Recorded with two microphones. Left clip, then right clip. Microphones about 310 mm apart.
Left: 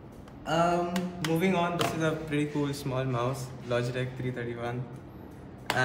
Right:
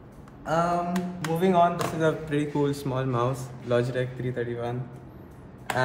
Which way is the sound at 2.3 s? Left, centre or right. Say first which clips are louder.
Right 4 dB; centre.